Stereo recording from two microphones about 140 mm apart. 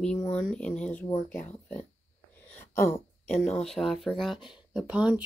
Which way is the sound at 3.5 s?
Centre (ahead or behind).